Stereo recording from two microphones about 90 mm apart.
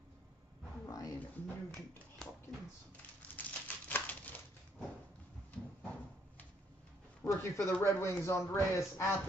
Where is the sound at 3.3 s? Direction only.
20° left (ahead or behind).